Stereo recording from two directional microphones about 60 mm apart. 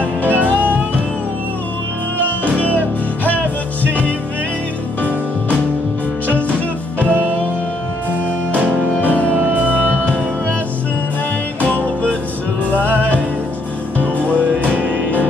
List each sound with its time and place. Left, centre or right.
0.0 s music: right
2.2 s music: left
7.0 s music: right
8.5 s music: right
8.9 s music: left
9.4 s music: right
9.7 s music: left
11.6 s music: left
13.9 s music: left
14.3 s music: right